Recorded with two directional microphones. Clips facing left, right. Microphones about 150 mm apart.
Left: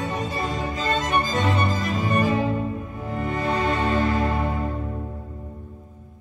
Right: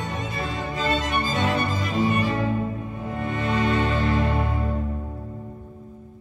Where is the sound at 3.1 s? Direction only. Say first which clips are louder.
Left 1 dB; 30° left (ahead or behind).